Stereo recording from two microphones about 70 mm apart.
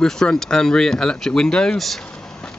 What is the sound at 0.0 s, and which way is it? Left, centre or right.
Speech, centre.